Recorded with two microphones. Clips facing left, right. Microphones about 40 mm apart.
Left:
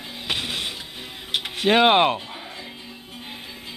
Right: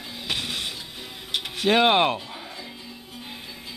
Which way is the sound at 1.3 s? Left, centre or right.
Centre.